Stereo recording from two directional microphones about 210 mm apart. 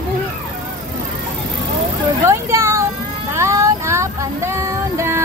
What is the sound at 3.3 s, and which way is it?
Child singing, 15° right (ahead or behind).